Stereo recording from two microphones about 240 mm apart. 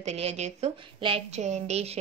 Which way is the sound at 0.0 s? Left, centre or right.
Right.